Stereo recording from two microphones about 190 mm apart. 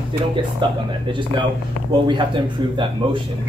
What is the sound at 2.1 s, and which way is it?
Speech, 25° right (ahead or behind).